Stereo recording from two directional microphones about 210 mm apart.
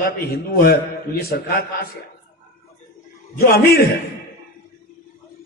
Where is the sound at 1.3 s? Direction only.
45° left (ahead or behind).